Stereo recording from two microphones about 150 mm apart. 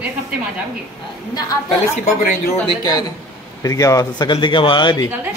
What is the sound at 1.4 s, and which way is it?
Speech, 25° left (ahead or behind).